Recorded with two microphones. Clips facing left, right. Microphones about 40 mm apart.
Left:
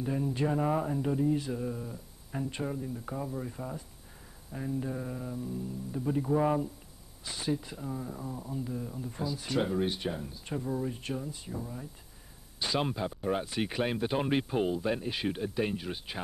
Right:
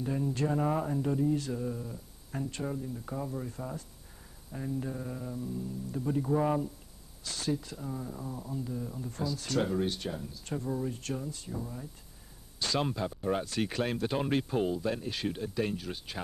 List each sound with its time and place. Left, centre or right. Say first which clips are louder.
0.0 s speech: left 1 dB; centre
10.5 s speech: even; centre